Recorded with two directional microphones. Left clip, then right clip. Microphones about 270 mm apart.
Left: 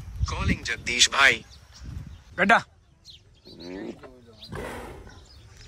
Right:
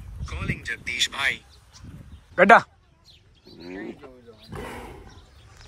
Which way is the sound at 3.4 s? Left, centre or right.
Centre.